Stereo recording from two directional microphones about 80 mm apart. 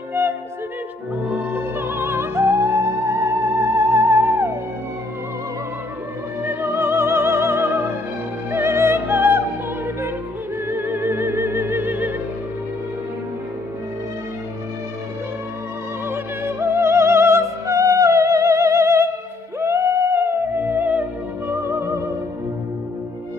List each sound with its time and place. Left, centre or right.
1.3 s music: right
6.4 s music: right
10.7 s music: right
16.1 s music: right